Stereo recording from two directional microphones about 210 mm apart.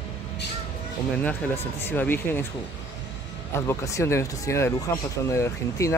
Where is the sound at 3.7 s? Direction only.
15° left (ahead or behind).